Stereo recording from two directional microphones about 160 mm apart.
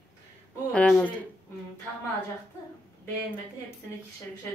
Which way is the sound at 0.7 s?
5° left (ahead or behind).